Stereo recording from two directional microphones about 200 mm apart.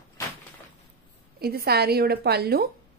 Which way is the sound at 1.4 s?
50° right (ahead or behind).